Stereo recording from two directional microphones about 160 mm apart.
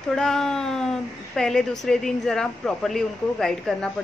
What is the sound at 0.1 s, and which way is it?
Speech, 5° left (ahead or behind).